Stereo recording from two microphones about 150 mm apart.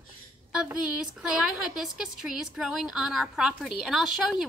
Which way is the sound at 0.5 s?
5° right (ahead or behind).